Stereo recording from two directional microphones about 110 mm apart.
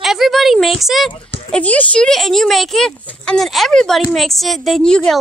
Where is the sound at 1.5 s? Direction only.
15° left (ahead or behind).